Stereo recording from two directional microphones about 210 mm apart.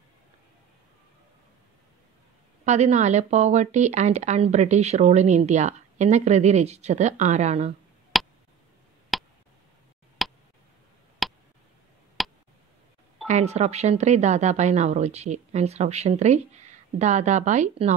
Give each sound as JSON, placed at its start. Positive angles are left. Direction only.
{"t": 2.6, "sound": "speech", "side_deg": -35}
{"t": 8.1, "sound": "a sound", "side_deg": 0}
{"t": 12.2, "sound": "tick", "side_deg": 0}
{"t": 13.3, "sound": "speech", "side_deg": -30}